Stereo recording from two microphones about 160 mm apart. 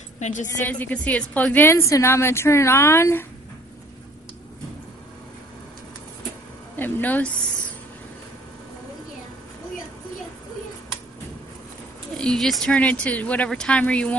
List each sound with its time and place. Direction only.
0.2 s a woman's voice: 50° left (ahead or behind)
0.7 s a woman's voice: 10° left (ahead or behind)
6.8 s a woman's voice: 10° left (ahead or behind)
12.2 s a woman's voice: 5° left (ahead or behind)